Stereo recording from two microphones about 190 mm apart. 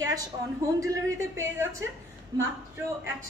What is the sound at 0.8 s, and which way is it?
A woman's voice, 15° right (ahead or behind).